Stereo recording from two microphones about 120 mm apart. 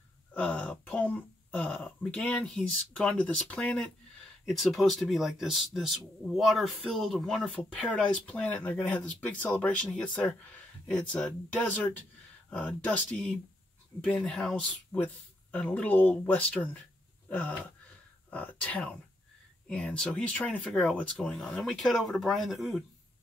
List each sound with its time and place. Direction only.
0.3 s speech: 10° left (ahead or behind)
14.9 s speech: 15° left (ahead or behind)
17.3 s gasp: 15° left (ahead or behind)
18.3 s speech: 15° left (ahead or behind)